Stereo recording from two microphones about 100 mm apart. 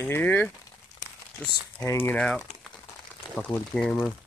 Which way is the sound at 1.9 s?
25° left (ahead or behind).